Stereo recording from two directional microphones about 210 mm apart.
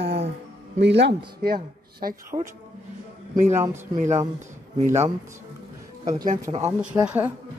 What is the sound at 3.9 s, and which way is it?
Speech, 35° right (ahead or behind).